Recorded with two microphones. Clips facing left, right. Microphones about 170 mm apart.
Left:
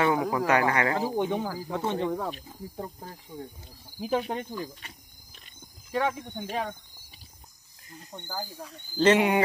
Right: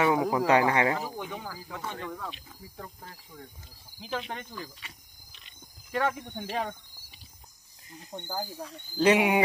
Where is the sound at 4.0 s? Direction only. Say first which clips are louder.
Left 7 dB; 45° left (ahead or behind).